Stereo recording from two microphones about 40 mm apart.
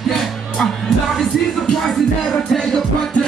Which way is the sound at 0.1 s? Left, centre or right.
Centre.